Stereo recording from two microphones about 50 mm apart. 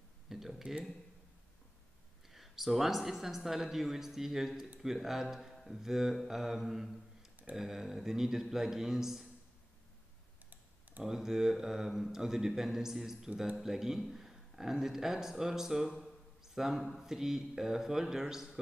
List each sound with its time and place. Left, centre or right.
0.3 s a sound: centre
2.2 s speech: centre
10.5 s typing: right
11.1 s a man's voice: centre